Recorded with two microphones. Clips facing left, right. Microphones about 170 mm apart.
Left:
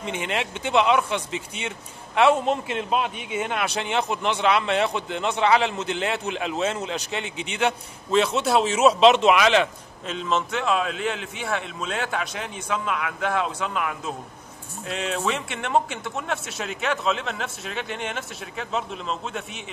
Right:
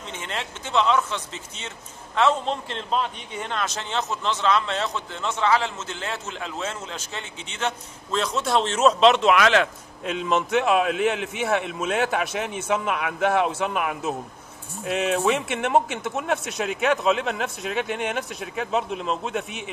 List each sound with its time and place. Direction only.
0.0 s a man's voice: 15° left (ahead or behind)
10.0 s a man's voice: 15° right (ahead or behind)